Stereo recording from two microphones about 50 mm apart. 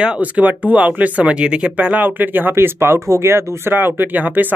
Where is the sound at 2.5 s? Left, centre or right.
Right.